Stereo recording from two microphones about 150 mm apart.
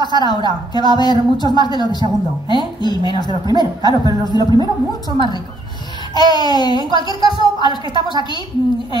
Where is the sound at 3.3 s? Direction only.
30° right (ahead or behind).